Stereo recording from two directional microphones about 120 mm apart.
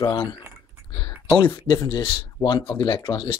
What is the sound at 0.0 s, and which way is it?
Speech, 35° left (ahead or behind).